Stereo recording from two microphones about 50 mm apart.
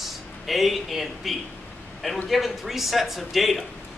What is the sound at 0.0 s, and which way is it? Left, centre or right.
Speech, centre.